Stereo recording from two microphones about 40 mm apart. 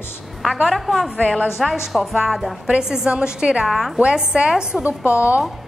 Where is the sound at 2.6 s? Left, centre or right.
Centre.